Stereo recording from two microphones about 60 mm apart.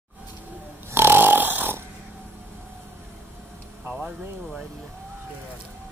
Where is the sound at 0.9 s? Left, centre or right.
Right.